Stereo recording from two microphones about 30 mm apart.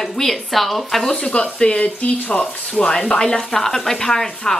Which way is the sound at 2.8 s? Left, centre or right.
Centre.